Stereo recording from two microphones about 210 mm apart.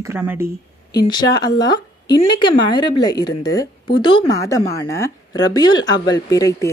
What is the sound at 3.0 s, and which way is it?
Speech, 20° left (ahead or behind).